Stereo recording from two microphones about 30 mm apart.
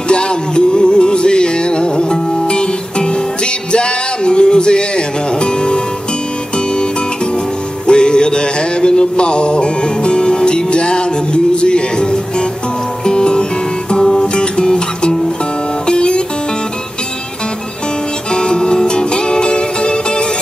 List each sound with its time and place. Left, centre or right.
0.1 s music: left
7.8 s music: left
18.3 s music: left